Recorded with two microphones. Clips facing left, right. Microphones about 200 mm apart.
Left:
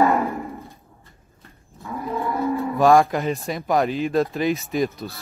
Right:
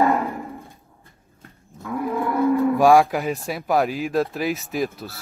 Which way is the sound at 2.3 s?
50° right (ahead or behind).